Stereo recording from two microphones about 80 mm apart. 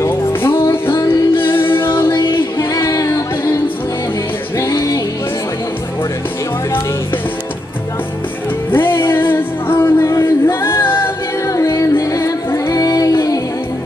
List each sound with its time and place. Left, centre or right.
0.1 s music: left
2.7 s music: left
4.6 s music: left
8.7 s music: left
11.4 s music: left